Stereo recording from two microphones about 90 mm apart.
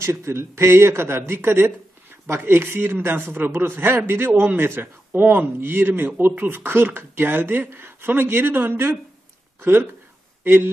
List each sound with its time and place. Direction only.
0.0 s speech: 30° right (ahead or behind)